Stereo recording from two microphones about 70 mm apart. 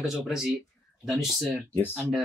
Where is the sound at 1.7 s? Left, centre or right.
Left.